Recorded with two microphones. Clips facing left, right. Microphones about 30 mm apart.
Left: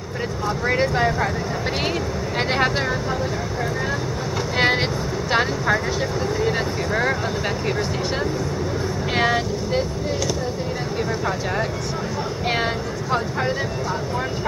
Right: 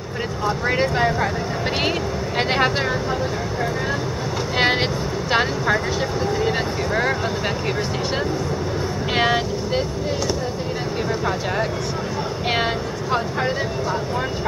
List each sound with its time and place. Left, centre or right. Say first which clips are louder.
0.5 s speech: even; centre
2.3 s speech: right 1 dB; centre
4.6 s vehicle: even; centre
5.3 s speech: right 1 dB; centre
9.1 s speech: right 1 dB; centre
12.4 s speech: right 1 dB; centre